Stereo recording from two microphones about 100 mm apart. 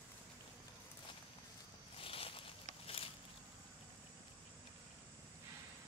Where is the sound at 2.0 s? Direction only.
70° left (ahead or behind).